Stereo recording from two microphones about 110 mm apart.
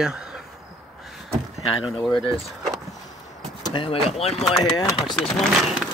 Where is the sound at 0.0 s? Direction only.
5° right (ahead or behind).